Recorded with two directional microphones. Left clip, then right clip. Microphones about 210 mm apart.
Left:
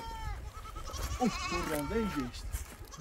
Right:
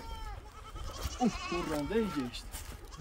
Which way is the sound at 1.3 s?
50° left (ahead or behind).